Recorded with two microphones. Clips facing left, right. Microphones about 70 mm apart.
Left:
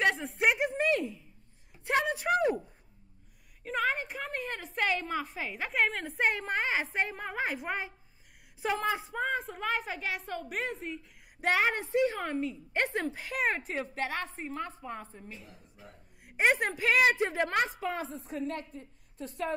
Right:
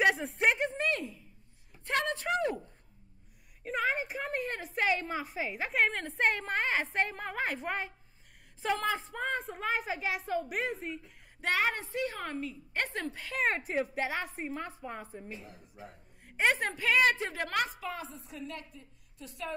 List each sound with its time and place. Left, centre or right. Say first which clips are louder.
0.0 s a sound: even; centre
3.6 s a woman's voice: left 1 dB; centre
11.4 s a woman's voice: left 3 dB; left
13.5 s a woman's voice: right 1 dB; centre
16.3 s a woman's voice: left 2 dB; centre
17.7 s a woman's voice: left 5 dB; left